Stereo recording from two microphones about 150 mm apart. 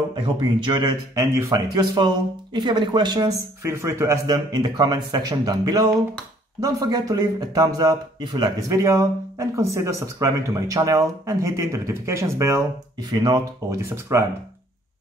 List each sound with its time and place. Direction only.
0.1 s a man's voice: 30° right (ahead or behind)